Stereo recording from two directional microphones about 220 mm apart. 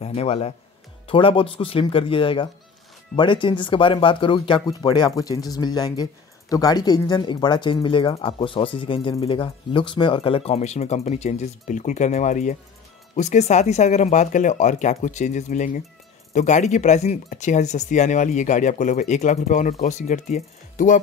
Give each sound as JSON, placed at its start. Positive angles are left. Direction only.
{"t": 0.0, "sound": "speech", "side_deg": 30}